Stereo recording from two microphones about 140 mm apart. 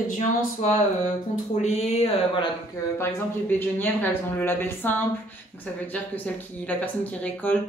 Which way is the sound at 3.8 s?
15° left (ahead or behind).